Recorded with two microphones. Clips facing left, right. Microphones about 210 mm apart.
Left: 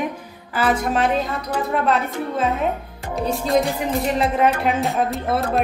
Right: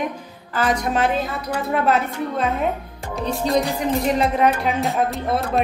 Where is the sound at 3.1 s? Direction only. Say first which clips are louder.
Left 1 dB; centre (ahead or behind).